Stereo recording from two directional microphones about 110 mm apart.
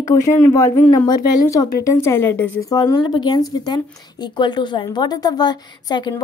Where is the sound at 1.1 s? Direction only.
35° left (ahead or behind); by 2.5 s 20° left (ahead or behind).